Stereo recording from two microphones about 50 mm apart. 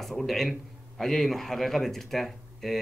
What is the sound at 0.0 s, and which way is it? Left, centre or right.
A man's voice, centre.